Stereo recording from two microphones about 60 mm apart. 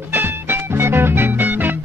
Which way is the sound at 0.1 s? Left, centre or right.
Right.